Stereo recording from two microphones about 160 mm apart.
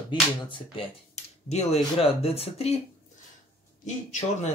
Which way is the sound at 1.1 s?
45° left (ahead or behind).